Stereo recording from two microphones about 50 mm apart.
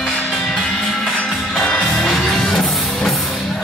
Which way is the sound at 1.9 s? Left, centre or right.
Centre.